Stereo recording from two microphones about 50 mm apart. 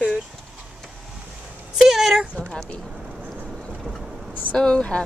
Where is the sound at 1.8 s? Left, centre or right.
Centre.